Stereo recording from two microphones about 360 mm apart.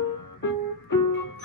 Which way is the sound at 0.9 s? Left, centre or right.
Left.